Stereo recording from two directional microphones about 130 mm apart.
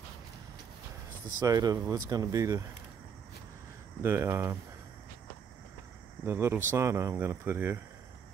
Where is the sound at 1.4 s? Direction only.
30° right (ahead or behind).